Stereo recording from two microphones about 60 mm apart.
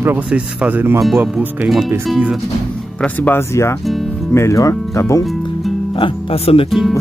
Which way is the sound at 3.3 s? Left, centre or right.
Left.